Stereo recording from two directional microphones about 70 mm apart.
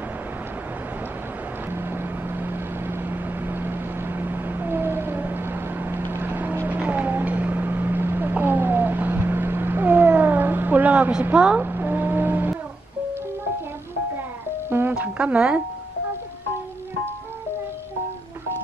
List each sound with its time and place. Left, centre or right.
2.4 s vehicle: right
4.2 s whale vocalization: right
6.8 s vehicle: right
11.3 s speech: centre
11.6 s vehicle: right
14.7 s music: right
15.1 s speech: centre